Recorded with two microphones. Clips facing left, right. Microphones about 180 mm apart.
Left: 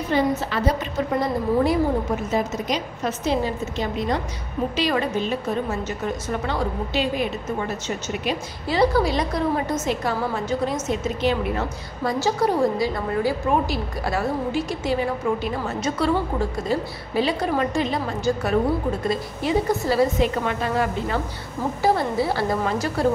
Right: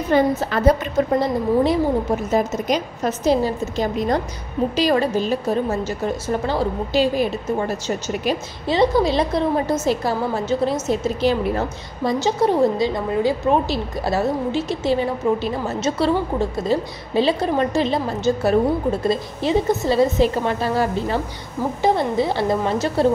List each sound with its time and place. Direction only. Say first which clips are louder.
0.1 s a woman's voice: right 4 dB; 50° right (ahead or behind)
1.2 s a woman's voice: right 3 dB; 25° right (ahead or behind)
2.3 s a woman's voice: right 5 dB; 45° right (ahead or behind)
8.6 s a woman's voice: right 3 dB; 20° right (ahead or behind)
12.0 s a woman's voice: right 3 dB; 20° right (ahead or behind)
21.8 s a woman's voice: right 2 dB; 20° right (ahead or behind)